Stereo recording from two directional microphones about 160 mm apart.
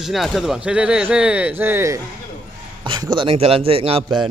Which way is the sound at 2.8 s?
30° right (ahead or behind).